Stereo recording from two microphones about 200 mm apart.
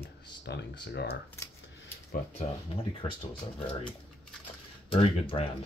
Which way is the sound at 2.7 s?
30° left (ahead or behind).